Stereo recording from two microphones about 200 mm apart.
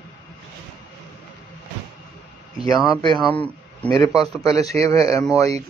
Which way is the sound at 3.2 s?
5° left (ahead or behind).